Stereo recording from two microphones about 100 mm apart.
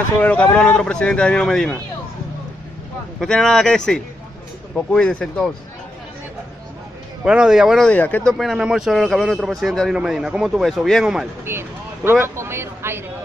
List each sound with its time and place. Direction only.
0.2 s speech: 15° left (ahead or behind)
3.2 s speech: 5° left (ahead or behind)
7.2 s a man's voice: 5° right (ahead or behind)
7.9 s speech: 15° left (ahead or behind)
8.3 s a man's voice: centre (ahead or behind)
11.4 s speech: 25° right (ahead or behind)